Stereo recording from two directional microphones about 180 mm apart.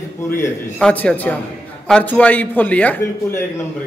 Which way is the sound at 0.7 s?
5° left (ahead or behind).